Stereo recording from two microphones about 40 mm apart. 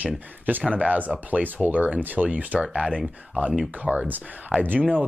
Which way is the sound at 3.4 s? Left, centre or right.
Right.